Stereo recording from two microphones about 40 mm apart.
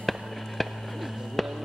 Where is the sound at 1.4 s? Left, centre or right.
Centre.